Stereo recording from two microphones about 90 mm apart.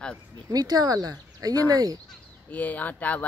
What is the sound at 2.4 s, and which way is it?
Speech, 20° left (ahead or behind).